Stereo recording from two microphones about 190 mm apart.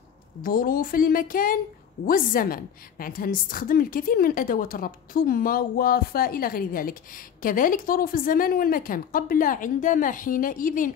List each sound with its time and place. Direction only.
0.4 s a woman's voice: 50° left (ahead or behind)